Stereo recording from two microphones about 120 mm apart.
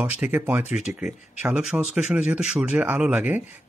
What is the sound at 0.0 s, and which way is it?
A man's voice, 15° right (ahead or behind).